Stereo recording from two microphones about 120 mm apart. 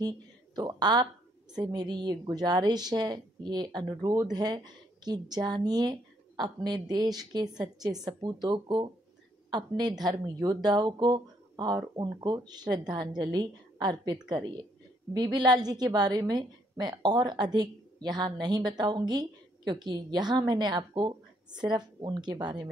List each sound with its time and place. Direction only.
0.6 s a woman's voice: 35° right (ahead or behind)